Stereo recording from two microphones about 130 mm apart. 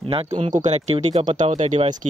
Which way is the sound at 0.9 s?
55° right (ahead or behind).